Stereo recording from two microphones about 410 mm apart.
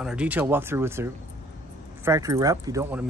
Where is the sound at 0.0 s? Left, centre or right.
Centre.